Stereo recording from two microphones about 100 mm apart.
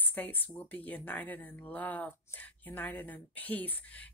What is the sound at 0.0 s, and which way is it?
Speech, 20° left (ahead or behind).